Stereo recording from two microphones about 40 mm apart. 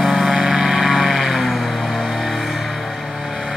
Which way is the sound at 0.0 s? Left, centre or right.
Centre.